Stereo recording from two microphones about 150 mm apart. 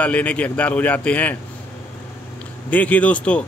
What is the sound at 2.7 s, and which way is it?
Speech, 10° left (ahead or behind).